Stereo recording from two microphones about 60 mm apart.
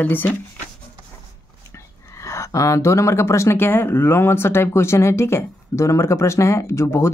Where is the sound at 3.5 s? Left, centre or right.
Left.